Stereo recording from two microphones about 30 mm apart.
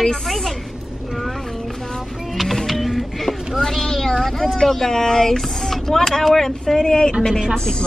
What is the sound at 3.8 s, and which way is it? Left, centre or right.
Speech, centre.